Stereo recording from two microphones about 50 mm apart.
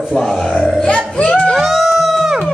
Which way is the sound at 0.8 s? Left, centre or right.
Left.